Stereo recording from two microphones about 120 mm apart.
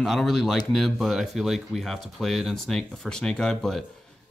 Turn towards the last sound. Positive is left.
turn(degrees=5)  # may be behind; listen again after turning